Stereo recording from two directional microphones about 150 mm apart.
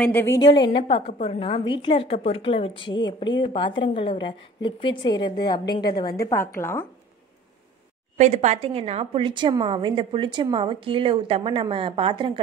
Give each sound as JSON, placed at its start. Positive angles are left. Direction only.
{"t": 0.0, "sound": "speech", "side_deg": 15}
{"t": 0.5, "sound": "a woman's voice", "side_deg": 35}
{"t": 1.4, "sound": "a woman's voice", "side_deg": 30}
{"t": 6.6, "sound": "speech", "side_deg": 15}
{"t": 8.2, "sound": "a woman's voice", "side_deg": -50}